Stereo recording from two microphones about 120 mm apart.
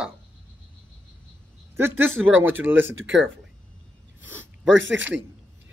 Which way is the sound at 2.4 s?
15° right (ahead or behind).